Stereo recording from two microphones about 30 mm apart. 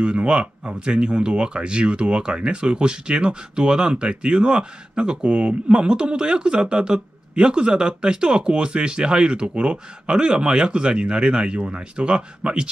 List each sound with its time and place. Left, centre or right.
0.0 s speech: right